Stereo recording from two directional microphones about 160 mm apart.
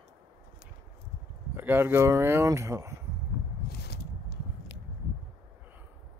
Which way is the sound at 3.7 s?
85° left.